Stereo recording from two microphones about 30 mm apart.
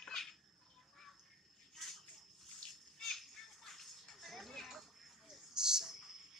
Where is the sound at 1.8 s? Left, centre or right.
Centre.